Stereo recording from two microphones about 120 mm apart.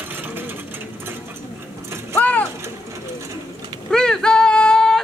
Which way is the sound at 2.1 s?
10° left (ahead or behind).